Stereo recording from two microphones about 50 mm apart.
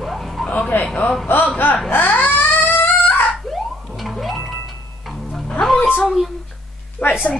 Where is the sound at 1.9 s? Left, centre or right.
Left.